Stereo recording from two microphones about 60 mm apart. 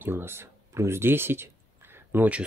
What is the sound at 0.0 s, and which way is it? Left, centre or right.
Speech, right.